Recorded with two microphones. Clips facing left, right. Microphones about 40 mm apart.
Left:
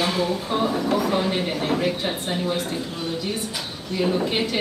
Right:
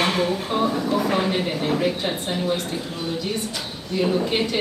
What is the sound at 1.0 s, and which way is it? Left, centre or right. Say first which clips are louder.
Speech: right 1 dB; right.